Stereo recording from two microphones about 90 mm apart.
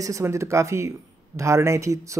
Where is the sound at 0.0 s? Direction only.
35° right (ahead or behind).